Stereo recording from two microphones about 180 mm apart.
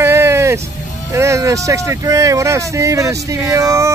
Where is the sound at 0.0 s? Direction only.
15° right (ahead or behind).